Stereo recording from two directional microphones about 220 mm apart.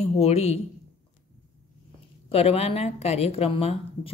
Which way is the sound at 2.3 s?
25° left (ahead or behind).